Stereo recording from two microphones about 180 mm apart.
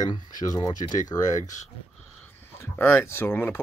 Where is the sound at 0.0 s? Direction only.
25° left (ahead or behind).